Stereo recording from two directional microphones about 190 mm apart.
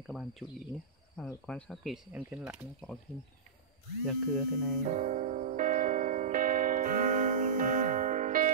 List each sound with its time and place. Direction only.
0.0 s speech: centre (ahead or behind)
4.0 s speech: centre (ahead or behind)
4.8 s music: 40° right (ahead or behind)